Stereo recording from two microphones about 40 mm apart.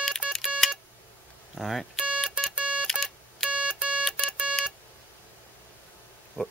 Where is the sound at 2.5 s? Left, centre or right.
Right.